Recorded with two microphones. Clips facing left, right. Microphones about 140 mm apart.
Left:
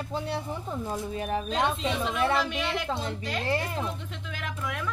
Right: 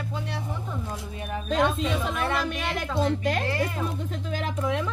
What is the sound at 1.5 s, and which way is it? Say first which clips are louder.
A woman's voice: right 7 dB; 45° right (ahead or behind).